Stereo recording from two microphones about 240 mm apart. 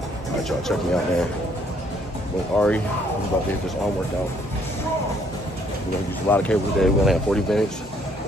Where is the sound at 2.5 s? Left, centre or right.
Centre.